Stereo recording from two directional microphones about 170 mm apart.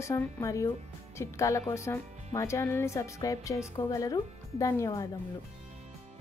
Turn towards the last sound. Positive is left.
turn(degrees=20)  # may be behind; listen again after turning